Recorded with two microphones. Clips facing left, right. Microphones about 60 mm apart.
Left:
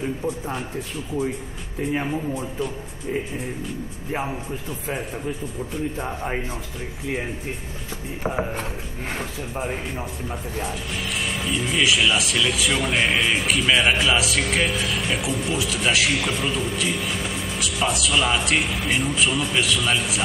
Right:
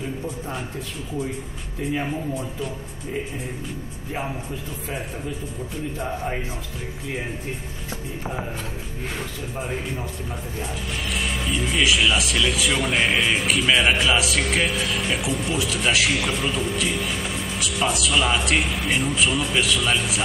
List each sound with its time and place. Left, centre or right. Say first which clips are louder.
5.9 s speech: even; centre
8.2 s speech: left 7 dB; left
9.6 s speech: left 1 dB; centre
11.1 s speech: even; centre